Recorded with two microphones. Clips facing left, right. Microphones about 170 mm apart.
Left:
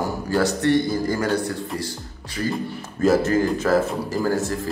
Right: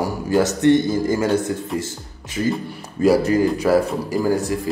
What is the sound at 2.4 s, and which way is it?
A man's voice, 20° right (ahead or behind).